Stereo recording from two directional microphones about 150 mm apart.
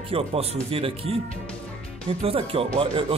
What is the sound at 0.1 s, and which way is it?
Speech, 40° right (ahead or behind).